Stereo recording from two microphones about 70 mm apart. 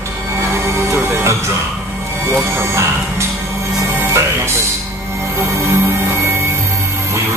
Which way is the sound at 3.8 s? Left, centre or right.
Right.